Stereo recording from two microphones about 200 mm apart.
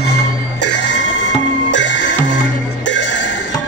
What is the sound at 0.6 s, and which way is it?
Music, 60° left (ahead or behind).